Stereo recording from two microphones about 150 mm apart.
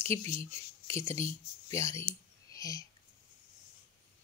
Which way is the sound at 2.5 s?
25° left (ahead or behind).